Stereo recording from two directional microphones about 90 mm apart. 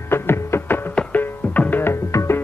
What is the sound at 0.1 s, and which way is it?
Music, 25° left (ahead or behind).